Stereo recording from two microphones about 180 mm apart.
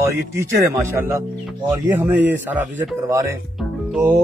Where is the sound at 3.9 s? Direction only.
10° right (ahead or behind).